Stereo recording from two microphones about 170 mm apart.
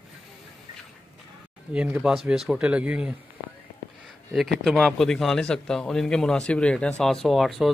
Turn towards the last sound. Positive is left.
turn(degrees=0)  # may be behind; listen again after turning